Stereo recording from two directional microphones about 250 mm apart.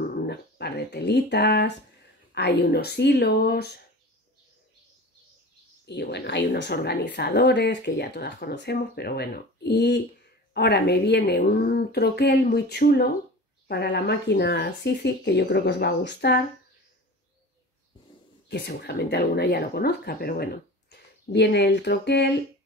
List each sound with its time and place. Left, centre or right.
0.1 s a sound: left
2.3 s speech: left
5.9 s speech: left
18.5 s speech: left